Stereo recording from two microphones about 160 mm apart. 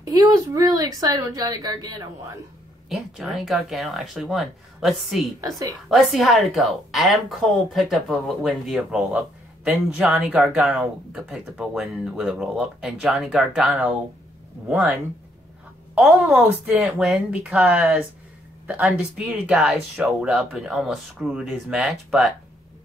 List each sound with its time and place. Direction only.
0.1 s a woman's voice: 20° right (ahead or behind)
2.9 s a woman's voice: centre (ahead or behind)